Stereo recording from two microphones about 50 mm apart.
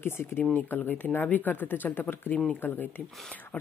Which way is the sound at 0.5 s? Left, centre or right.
Left.